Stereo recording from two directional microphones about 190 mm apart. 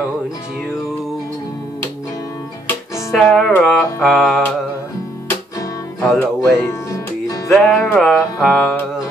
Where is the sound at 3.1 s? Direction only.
Centre (ahead or behind).